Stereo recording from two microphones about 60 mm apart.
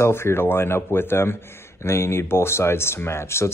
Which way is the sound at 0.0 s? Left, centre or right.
Left.